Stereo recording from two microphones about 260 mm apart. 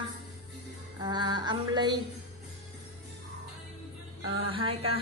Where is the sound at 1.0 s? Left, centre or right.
Centre.